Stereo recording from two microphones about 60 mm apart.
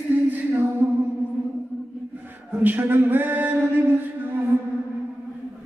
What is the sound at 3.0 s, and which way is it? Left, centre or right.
Singing, right.